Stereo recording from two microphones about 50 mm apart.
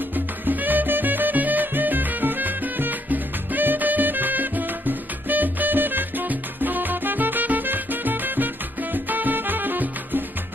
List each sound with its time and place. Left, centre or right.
0.1 s music: right